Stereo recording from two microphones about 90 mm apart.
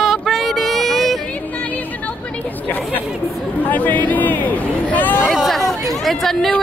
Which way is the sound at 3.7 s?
20° left (ahead or behind).